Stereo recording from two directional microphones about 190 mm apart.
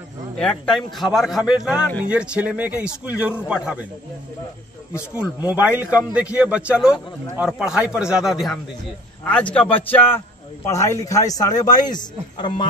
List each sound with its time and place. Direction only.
0.4 s a man's voice: 5° left (ahead or behind)
5.1 s a man's voice: 5° right (ahead or behind); by 12.6 s 25° left (ahead or behind)